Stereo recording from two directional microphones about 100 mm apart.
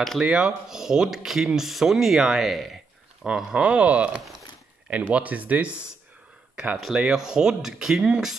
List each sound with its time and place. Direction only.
0.2 s speech: 10° right (ahead or behind)